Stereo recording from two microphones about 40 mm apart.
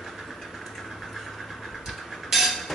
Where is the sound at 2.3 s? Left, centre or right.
Centre.